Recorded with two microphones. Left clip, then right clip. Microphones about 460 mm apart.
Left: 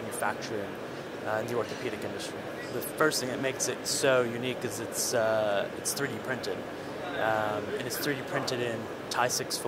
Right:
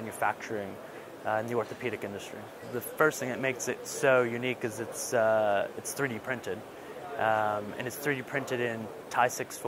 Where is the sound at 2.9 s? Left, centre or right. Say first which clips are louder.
Right 1 dB; right.